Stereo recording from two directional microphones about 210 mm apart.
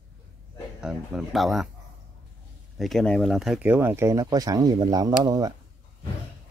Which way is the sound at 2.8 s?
Centre (ahead or behind).